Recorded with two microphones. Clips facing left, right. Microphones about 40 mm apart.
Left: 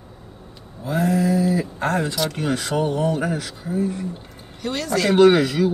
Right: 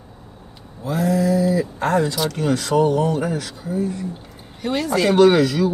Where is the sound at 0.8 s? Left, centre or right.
Left.